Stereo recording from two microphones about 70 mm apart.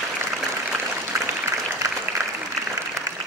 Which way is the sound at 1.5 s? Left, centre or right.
Right.